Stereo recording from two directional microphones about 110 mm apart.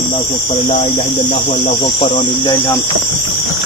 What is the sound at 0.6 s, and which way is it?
Speech, 55° left (ahead or behind).